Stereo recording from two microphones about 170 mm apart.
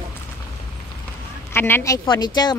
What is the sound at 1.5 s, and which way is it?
Speech, 15° left (ahead or behind).